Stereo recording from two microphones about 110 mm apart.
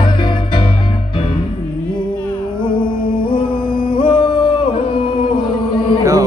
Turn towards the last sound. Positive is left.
turn(degrees=-30)  # may be behind; listen again after turning